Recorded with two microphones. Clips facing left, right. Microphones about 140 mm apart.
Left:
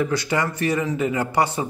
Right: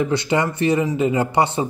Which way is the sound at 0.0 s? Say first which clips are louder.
Right 3 dB; 25° right (ahead or behind).